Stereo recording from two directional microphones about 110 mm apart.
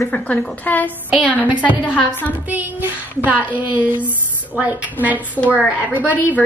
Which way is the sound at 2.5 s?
15° right (ahead or behind).